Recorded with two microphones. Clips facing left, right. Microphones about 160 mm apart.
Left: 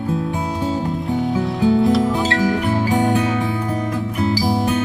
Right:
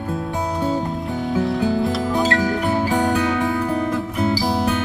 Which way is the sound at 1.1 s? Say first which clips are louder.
Left 1 dB; centre (ahead or behind).